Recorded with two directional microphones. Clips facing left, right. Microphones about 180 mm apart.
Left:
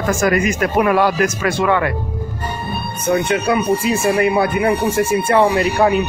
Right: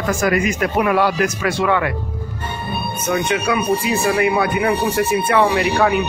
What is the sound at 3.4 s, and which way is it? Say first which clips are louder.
Speech: left 2 dB; 30° left (ahead or behind).